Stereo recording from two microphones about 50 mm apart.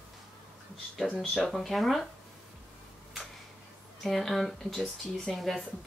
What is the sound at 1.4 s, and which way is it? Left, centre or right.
Speech, centre.